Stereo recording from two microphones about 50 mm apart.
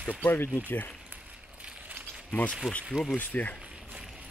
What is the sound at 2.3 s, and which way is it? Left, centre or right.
Speech, left.